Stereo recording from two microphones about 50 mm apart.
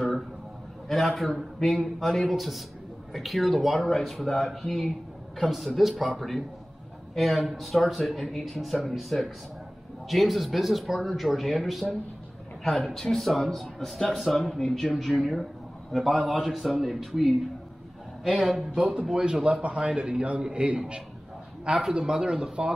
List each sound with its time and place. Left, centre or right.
0.8 s speech: centre
15.9 s speech: centre
18.4 s a man's voice: centre
21.6 s speech: centre